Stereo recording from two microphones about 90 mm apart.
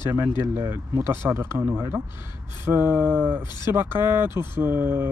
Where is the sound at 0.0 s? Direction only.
30° right (ahead or behind).